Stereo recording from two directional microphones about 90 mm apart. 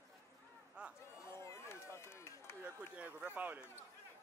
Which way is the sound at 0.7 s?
10° right (ahead or behind).